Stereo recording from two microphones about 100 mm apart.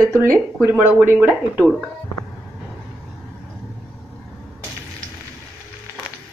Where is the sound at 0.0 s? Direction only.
25° right (ahead or behind).